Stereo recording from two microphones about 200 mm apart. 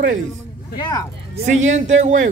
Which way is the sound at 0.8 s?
20° left (ahead or behind).